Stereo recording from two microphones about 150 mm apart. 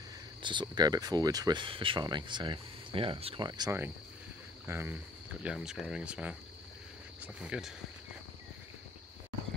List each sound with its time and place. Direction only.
0.4 s speech: 30° right (ahead or behind)
4.6 s speech: 15° right (ahead or behind)
5.4 s speech: 5° right (ahead or behind)